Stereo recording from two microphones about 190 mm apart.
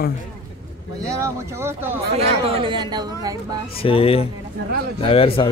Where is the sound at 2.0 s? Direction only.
30° right (ahead or behind).